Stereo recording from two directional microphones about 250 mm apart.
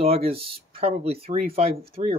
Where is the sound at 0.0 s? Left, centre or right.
Right.